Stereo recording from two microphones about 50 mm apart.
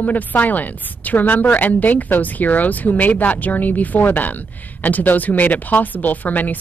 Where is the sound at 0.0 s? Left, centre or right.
Left.